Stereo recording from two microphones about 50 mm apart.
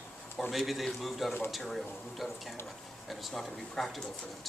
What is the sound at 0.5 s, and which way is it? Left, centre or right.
Speech, centre.